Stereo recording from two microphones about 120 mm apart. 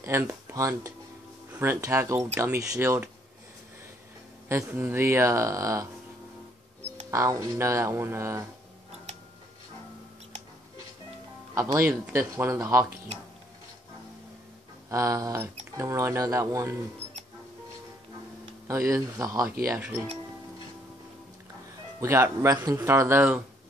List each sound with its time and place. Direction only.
0.0 s speech: 25° right (ahead or behind)
4.5 s speech: 20° right (ahead or behind)
7.1 s speech: 25° right (ahead or behind)
11.5 s speech: 20° right (ahead or behind)
14.9 s speech: 25° right (ahead or behind)
18.7 s speech: 25° right (ahead or behind)
22.0 s speech: 20° right (ahead or behind)